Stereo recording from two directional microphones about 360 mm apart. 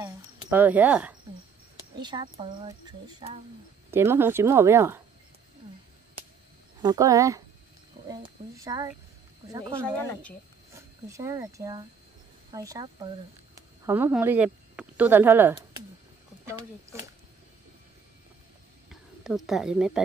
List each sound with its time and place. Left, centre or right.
0.0 s speech: centre
6.8 s speech: centre
18.9 s speech: centre